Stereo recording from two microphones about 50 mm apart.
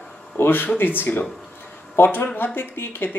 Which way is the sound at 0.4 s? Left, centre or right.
Left.